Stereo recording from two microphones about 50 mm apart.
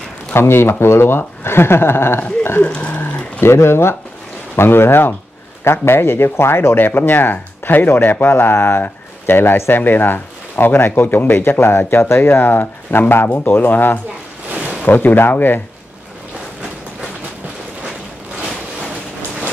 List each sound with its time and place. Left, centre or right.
0.3 s speech: left
2.6 s a sound: left
3.3 s speech: left